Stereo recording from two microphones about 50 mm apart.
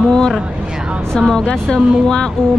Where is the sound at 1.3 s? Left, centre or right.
Centre.